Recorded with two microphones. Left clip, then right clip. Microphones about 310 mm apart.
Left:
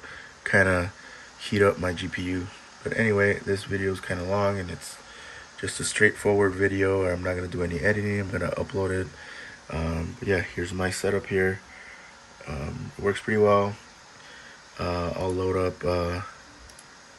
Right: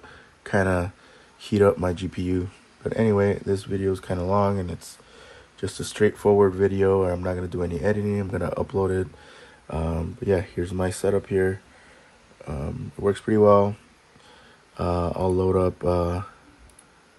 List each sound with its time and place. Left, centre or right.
0.4 s speech: centre
14.8 s speech: centre